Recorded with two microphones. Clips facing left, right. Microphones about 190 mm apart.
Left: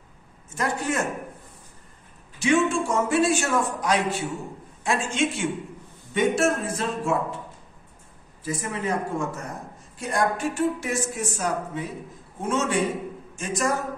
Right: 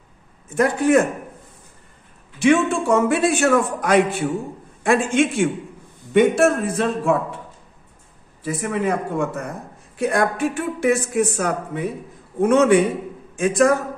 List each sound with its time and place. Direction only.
0.6 s speech: 55° right (ahead or behind)
2.3 s speech: 60° right (ahead or behind)
8.5 s speech: 60° right (ahead or behind)